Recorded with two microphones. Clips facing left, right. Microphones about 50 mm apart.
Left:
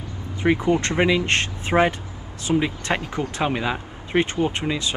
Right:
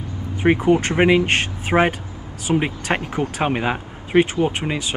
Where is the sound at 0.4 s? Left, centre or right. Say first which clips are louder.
Right 3 dB; right.